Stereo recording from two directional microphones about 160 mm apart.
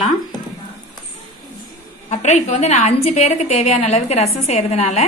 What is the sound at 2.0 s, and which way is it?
A woman's voice, 45° left (ahead or behind).